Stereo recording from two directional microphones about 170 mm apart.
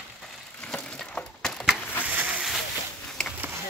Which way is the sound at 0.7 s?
5° left (ahead or behind).